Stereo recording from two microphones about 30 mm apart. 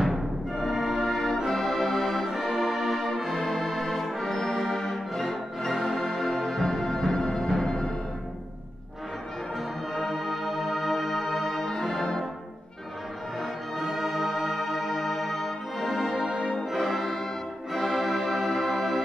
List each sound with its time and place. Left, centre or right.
0.0 s music: centre
2.3 s brass instrument: centre
3.4 s music: centre
5.9 s music: centre
9.9 s music: centre
13.7 s music: centre
16.7 s music: centre
17.7 s organ: centre